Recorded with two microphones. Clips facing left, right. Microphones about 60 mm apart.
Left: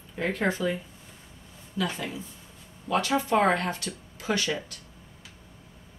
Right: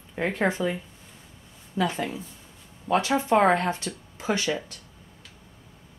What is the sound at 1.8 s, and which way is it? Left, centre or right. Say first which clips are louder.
Speech: right 4 dB; right.